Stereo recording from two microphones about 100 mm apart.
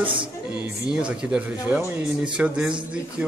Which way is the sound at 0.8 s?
10° right (ahead or behind).